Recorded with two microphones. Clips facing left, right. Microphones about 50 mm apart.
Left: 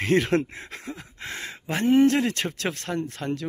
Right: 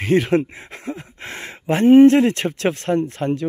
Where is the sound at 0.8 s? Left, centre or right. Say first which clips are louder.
Right 8 dB; right.